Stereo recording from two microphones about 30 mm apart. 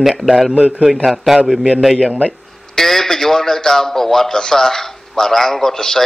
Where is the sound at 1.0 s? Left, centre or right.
Centre.